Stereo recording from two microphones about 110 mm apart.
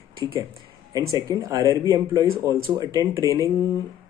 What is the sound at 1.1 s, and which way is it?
Speech, 35° right (ahead or behind).